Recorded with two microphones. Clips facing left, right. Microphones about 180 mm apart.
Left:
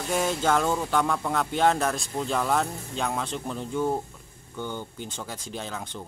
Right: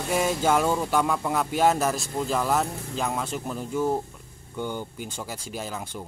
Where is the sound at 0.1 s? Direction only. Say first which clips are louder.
Right 1 dB; 10° right (ahead or behind).